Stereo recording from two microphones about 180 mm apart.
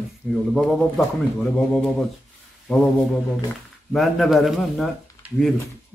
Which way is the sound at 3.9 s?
Centre (ahead or behind).